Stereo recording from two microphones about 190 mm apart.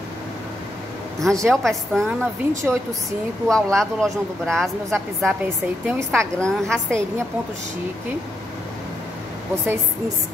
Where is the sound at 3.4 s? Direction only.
5° left (ahead or behind).